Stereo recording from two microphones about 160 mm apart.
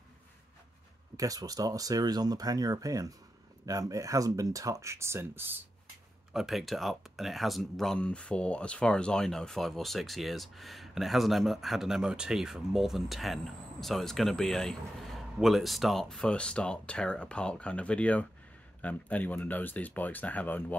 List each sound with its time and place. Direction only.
1.1 s speech: 20° right (ahead or behind)
6.3 s speech: centre (ahead or behind)